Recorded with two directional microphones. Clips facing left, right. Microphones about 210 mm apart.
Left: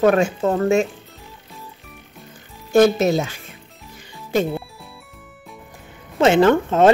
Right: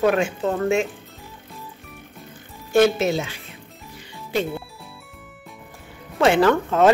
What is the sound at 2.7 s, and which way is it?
Speech, 40° left (ahead or behind).